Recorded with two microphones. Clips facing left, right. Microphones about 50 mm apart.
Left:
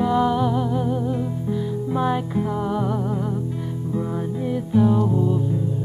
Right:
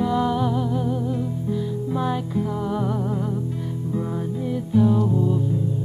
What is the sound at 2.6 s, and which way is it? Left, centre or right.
Music, centre.